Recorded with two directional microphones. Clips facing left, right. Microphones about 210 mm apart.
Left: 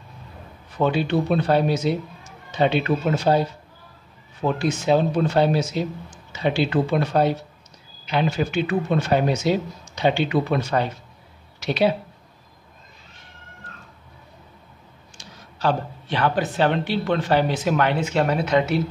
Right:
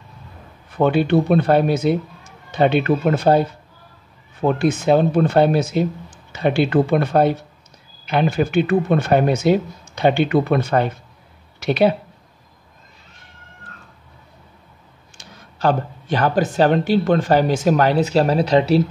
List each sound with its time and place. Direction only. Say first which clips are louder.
0.7 s speech: right 5 dB; 55° right (ahead or behind)
15.1 s speech: right 2 dB; 50° right (ahead or behind); by 18.8 s 35° right (ahead or behind)